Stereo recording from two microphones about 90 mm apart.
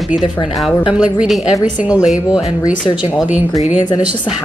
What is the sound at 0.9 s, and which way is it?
Speech, 5° right (ahead or behind).